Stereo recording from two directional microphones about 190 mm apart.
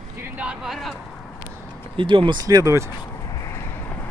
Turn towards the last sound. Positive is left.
turn(degrees=15)  # may be behind; listen again after turning